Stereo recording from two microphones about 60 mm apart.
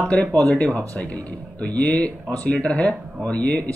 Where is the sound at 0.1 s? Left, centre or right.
Left.